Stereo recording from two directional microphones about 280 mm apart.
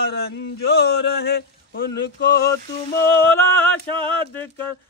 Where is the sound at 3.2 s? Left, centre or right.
Centre.